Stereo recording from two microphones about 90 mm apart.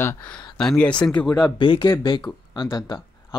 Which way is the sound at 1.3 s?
50° left (ahead or behind).